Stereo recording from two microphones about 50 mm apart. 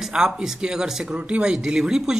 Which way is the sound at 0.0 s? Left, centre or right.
Centre.